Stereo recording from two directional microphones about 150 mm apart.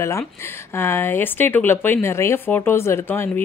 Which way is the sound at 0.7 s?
15° left (ahead or behind).